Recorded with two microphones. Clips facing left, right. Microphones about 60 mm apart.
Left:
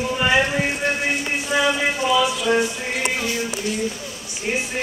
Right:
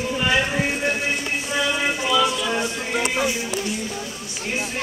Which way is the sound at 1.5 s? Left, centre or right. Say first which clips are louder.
Left 3 dB; centre.